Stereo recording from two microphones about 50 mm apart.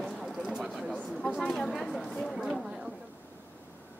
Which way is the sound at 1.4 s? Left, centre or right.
Centre.